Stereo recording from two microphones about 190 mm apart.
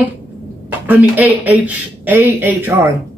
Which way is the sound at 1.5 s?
10° right (ahead or behind).